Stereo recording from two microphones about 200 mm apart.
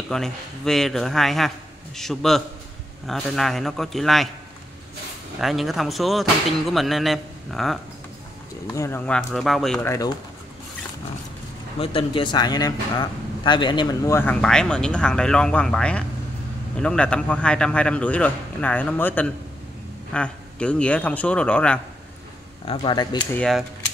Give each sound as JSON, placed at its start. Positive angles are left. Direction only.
{"t": 0.1, "sound": "a man's voice", "side_deg": 0}
{"t": 5.4, "sound": "a man's voice", "side_deg": 0}
{"t": 8.7, "sound": "a man's voice", "side_deg": 10}
{"t": 9.8, "sound": "a man's voice", "side_deg": 15}
{"t": 11.8, "sound": "a man's voice", "side_deg": 25}
{"t": 22.7, "sound": "speech", "side_deg": 20}
{"t": 23.3, "sound": "a man's voice", "side_deg": 5}